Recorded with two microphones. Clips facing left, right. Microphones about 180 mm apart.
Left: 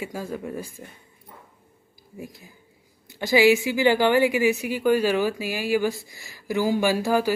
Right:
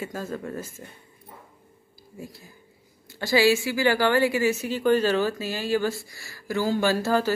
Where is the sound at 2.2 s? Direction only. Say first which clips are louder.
Left 2 dB; 15° left (ahead or behind).